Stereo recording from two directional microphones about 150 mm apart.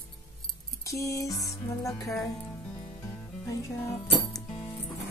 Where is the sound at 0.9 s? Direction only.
20° left (ahead or behind).